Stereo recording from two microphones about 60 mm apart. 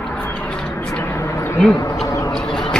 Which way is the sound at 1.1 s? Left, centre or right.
Left.